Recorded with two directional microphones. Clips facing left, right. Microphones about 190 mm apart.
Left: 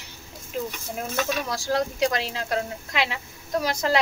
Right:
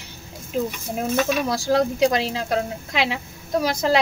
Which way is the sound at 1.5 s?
30° right (ahead or behind).